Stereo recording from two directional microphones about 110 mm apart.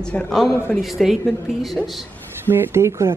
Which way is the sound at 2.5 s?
25° right (ahead or behind).